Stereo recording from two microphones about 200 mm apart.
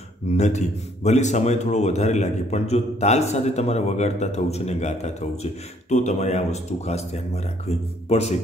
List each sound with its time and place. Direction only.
0.3 s a man's voice: 35° left (ahead or behind)